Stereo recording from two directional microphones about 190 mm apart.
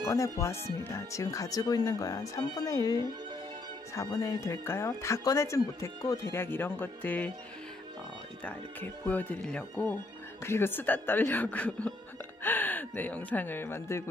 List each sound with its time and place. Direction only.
0.0 s speech: 15° left (ahead or behind)
8.5 s speech: 10° left (ahead or behind)